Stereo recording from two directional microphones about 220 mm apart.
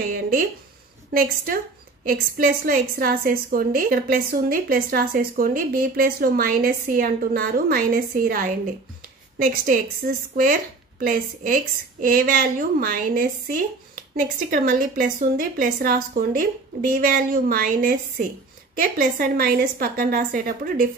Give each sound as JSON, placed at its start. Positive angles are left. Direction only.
{"t": 0.0, "sound": "a woman's voice", "side_deg": -40}